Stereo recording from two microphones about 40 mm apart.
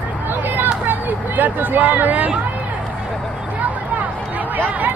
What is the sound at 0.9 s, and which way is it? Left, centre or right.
Speech, right.